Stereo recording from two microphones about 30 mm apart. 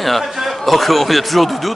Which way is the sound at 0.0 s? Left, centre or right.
Centre.